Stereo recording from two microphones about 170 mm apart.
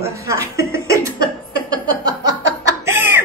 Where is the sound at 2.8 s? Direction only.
15° right (ahead or behind).